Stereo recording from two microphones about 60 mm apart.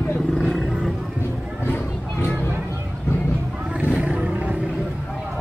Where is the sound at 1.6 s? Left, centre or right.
Left.